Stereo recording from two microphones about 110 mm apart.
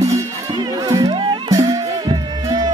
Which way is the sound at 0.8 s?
35° right (ahead or behind).